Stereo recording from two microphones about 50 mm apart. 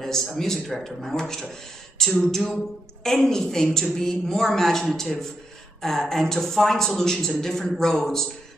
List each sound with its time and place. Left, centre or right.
0.0 s a woman's voice: centre